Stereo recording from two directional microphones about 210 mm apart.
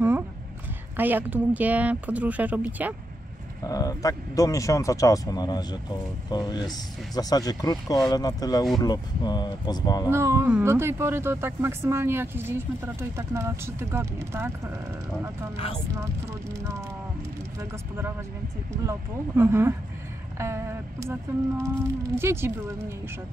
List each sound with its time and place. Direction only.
0.9 s speech: 10° right (ahead or behind)
3.6 s speech: 15° left (ahead or behind)
10.0 s speech: 15° right (ahead or behind)
15.9 s speech: 15° right (ahead or behind)